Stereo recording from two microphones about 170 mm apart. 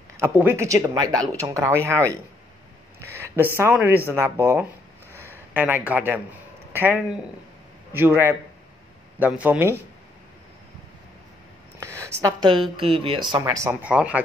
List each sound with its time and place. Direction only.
0.2 s speech: 15° right (ahead or behind)
3.0 s speech: 15° right (ahead or behind)
12.0 s a woman's voice: 25° right (ahead or behind)
13.3 s speech: 20° right (ahead or behind)
13.8 s speech: 5° right (ahead or behind)